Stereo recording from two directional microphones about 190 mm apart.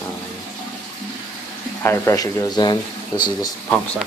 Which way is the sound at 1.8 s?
15° left (ahead or behind).